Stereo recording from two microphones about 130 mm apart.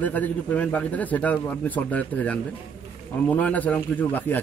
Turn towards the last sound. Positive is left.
turn(degrees=15)  # may be behind; listen again after turning